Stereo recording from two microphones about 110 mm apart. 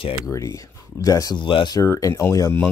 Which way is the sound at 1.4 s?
50° left (ahead or behind).